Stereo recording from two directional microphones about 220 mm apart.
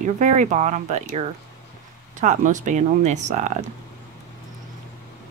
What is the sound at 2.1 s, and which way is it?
Speech, 35° right (ahead or behind).